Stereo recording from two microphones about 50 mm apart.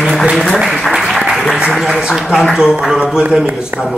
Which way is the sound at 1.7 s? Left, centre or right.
Centre.